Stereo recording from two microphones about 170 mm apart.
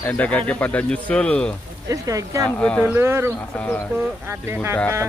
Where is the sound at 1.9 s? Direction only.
20° right (ahead or behind).